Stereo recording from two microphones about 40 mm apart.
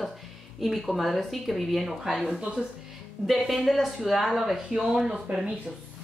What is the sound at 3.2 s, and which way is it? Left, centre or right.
A woman's voice, centre.